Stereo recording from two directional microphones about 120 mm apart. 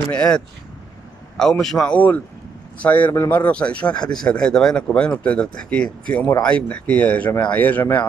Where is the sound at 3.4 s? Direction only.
10° left (ahead or behind).